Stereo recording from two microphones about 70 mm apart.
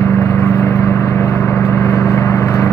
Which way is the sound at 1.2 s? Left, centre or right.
Left.